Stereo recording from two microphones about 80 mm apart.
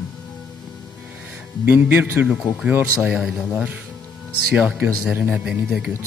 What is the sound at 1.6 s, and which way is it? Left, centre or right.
Speech, right.